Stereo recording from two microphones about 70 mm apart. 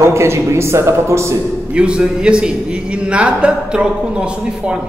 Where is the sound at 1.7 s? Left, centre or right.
Centre.